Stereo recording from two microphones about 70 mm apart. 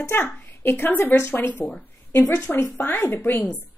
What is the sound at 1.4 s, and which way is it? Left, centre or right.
A woman's voice, left.